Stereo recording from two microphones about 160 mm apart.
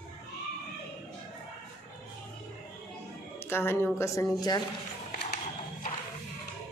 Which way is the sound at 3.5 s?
15° left (ahead or behind).